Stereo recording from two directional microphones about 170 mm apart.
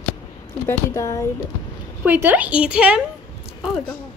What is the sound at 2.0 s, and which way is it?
Speech, 10° right (ahead or behind).